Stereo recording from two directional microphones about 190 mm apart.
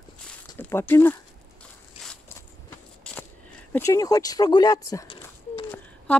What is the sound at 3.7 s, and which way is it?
Speech, 15° left (ahead or behind).